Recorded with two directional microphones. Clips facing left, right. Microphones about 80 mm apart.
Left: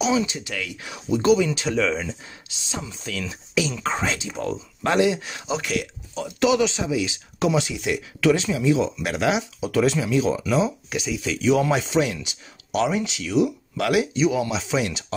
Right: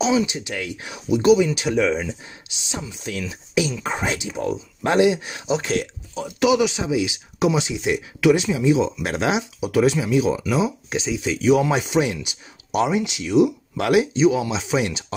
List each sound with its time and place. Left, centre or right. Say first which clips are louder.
0.1 s speech: right 2 dB; centre
0.9 s speech: right 3 dB; centre
3.1 s speech: right 2 dB; right
3.8 s speech: even; centre
6.1 s speech: right 2 dB; centre
10.9 s speech: right 3 dB; right